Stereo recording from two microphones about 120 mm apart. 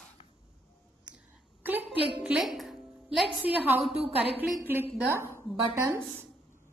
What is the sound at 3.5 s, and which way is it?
Speech, 15° right (ahead or behind).